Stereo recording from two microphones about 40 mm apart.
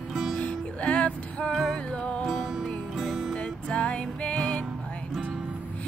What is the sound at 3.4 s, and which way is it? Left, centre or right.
Music, left.